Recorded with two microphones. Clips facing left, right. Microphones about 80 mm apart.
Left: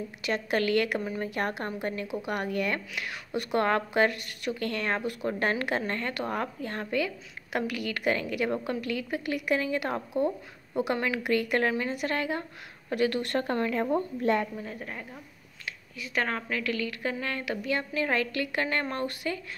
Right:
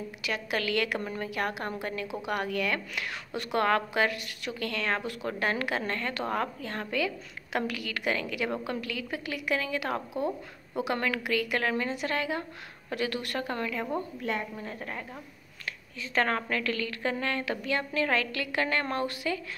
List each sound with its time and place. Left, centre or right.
0.2 s a woman's voice: left
0.9 s speech: centre
1.2 s a woman's voice: left
10.1 s speech: centre
10.9 s a woman's voice: left
14.6 s a woman's voice: centre; by 19.4 s left